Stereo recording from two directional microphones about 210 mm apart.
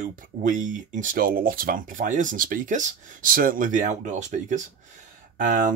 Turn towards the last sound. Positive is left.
turn(degrees=-40)  # may be behind; listen again after turning